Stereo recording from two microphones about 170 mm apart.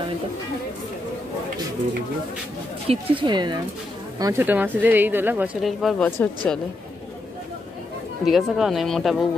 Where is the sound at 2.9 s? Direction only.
30° right (ahead or behind).